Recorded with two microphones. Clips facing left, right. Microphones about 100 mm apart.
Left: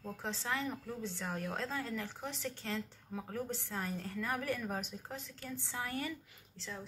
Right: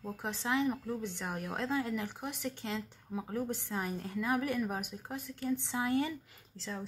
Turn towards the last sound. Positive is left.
turn(degrees=-35)  # may be behind; listen again after turning